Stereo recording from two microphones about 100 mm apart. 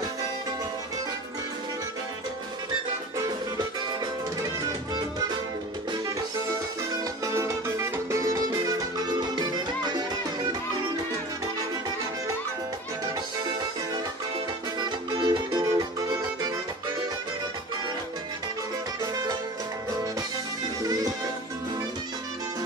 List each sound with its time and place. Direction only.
3.5 s music: 40° right (ahead or behind)
7.2 s music: 30° right (ahead or behind); by 10.5 s 45° right (ahead or behind)
14.8 s music: 50° right (ahead or behind)
20.8 s music: 35° right (ahead or behind)